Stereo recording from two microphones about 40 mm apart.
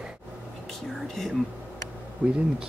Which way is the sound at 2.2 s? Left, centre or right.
Right.